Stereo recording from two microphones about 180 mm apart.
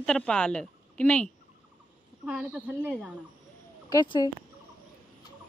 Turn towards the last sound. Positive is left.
turn(degrees=20)  # may be behind; listen again after turning